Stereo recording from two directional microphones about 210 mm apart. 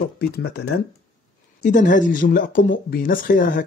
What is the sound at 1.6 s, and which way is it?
Speech, 35° left (ahead or behind).